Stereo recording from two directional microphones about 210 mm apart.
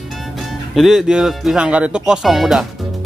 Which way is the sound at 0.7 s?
Centre (ahead or behind).